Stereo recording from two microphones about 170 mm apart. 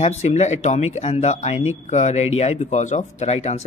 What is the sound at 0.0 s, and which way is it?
Speech, 40° left (ahead or behind).